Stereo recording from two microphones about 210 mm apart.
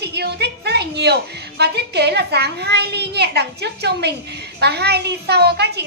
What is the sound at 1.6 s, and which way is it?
A child's voice, 50° right (ahead or behind).